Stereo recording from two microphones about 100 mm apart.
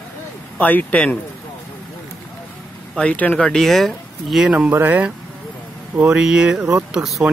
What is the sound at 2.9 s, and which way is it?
Speech, 15° left (ahead or behind).